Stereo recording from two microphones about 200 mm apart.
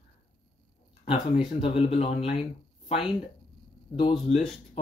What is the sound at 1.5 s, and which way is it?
Speech, 30° left (ahead or behind).